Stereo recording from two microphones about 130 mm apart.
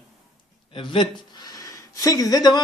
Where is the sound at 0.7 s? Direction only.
40° left (ahead or behind).